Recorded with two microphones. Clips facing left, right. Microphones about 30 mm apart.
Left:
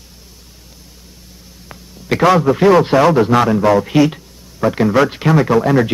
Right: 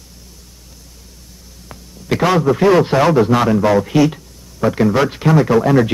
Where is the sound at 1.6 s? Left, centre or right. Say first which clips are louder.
Even; centre.